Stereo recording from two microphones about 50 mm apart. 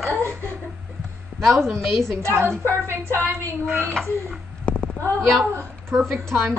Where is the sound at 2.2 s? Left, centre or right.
Right.